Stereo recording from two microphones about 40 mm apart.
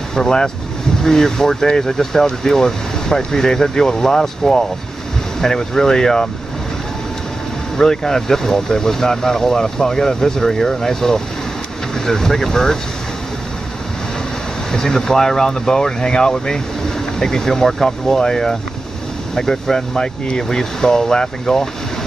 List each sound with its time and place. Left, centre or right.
0.1 s speech: centre
7.7 s speech: centre
14.7 s speech: centre